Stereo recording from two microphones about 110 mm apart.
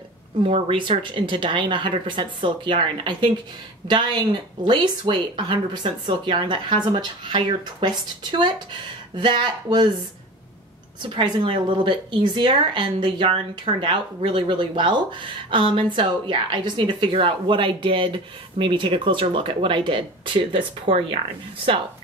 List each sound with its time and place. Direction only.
0.4 s speech: 50° right (ahead or behind)
11.0 s speech: 45° right (ahead or behind)